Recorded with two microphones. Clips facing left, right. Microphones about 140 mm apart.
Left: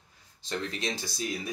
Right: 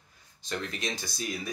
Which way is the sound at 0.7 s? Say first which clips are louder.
Left 1 dB; 30° left (ahead or behind).